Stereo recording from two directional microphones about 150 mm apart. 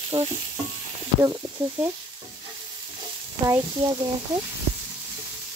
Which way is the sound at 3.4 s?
20° right (ahead or behind).